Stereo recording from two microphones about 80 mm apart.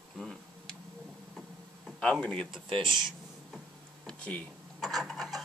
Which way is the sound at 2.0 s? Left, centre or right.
Centre.